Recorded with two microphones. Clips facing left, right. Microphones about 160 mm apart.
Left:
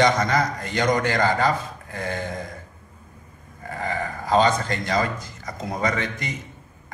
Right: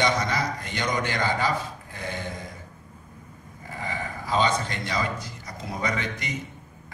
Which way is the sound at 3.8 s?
45° left (ahead or behind).